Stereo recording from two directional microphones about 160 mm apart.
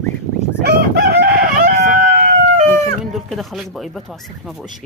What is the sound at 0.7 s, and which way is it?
Crowing, 85° right.